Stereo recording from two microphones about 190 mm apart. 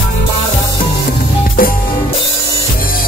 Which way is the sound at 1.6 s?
50° left (ahead or behind).